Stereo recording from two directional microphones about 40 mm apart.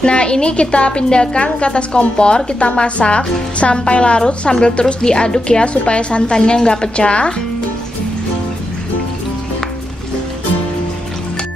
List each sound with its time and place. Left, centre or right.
0.0 s a woman's voice: left